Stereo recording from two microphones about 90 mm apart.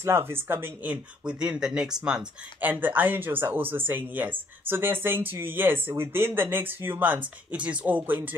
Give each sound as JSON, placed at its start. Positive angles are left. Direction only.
{"t": 0.0, "sound": "speech", "side_deg": -25}
{"t": 1.2, "sound": "speech", "side_deg": -10}
{"t": 2.6, "sound": "speech", "side_deg": -20}